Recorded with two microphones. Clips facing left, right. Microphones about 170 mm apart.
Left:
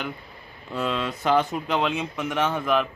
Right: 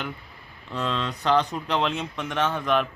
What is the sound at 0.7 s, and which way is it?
Speech, 10° left (ahead or behind).